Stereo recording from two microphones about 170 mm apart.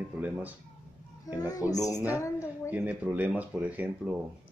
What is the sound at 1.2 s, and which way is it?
A woman's voice, 20° left (ahead or behind).